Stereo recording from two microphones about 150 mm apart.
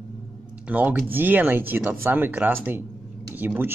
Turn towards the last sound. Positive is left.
turn(degrees=-15)  # may be behind; listen again after turning